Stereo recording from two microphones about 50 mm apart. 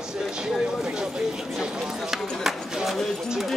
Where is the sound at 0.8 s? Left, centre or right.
Centre.